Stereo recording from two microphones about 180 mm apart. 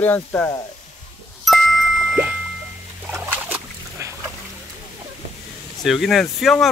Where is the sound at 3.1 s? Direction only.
15° right (ahead or behind).